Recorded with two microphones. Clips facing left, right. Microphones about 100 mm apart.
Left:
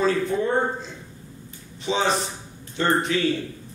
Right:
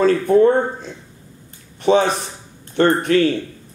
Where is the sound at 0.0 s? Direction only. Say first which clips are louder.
Right 9 dB; 55° right (ahead or behind).